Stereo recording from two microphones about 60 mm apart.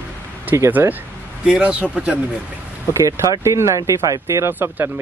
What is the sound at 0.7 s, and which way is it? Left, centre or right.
Speech, right.